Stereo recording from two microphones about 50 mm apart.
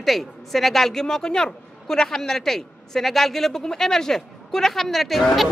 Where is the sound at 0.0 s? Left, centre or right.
Centre.